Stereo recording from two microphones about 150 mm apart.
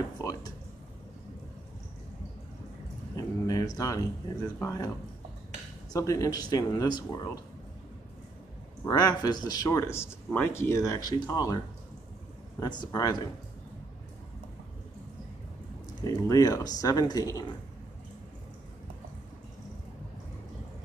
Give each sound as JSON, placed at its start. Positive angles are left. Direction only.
{"t": 0.2, "sound": "a sound", "side_deg": 20}
{"t": 3.2, "sound": "a sound", "side_deg": 25}
{"t": 4.6, "sound": "speech", "side_deg": 20}
{"t": 5.9, "sound": "speech", "side_deg": 20}
{"t": 8.8, "sound": "speech", "side_deg": 25}
{"t": 16.0, "sound": "speech", "side_deg": 25}